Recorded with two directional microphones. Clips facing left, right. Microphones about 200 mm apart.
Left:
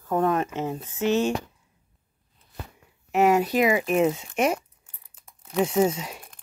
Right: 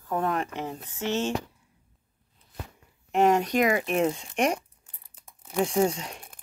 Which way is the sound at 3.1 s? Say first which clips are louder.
Left 2 dB; 5° left (ahead or behind).